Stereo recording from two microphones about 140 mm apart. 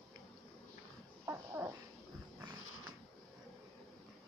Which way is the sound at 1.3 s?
20° right (ahead or behind).